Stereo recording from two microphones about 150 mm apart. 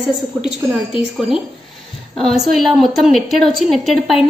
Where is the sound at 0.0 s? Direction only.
5° right (ahead or behind).